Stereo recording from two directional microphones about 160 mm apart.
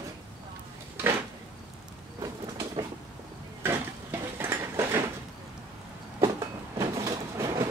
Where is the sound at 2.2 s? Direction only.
20° right (ahead or behind).